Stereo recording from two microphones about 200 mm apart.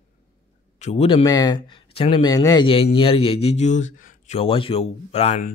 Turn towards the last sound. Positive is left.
turn(degrees=35)  # may be behind; listen again after turning